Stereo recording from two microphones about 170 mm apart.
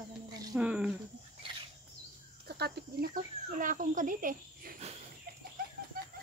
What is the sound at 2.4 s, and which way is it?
Speech, 70° right (ahead or behind).